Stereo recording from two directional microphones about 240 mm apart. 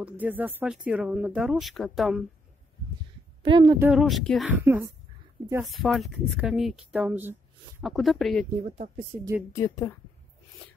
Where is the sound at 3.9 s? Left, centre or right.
Centre.